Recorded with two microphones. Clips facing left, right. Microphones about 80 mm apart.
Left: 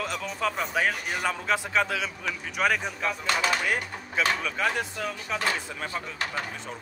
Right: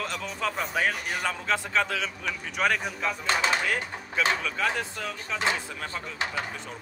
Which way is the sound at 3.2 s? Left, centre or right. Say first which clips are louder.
Right 1 dB; right.